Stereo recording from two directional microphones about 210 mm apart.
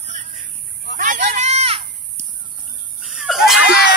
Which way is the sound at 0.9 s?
40° right (ahead or behind).